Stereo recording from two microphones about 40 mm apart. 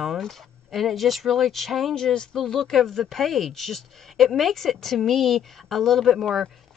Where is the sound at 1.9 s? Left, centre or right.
Centre.